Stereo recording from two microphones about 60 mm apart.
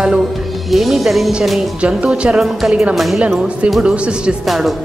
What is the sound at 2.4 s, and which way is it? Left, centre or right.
Speech, centre.